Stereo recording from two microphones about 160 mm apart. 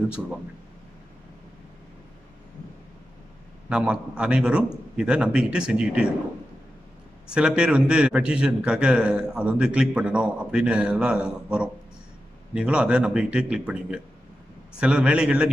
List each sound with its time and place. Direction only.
3.6 s a man's voice: 5° right (ahead or behind)
7.2 s a man's voice: 5° right (ahead or behind)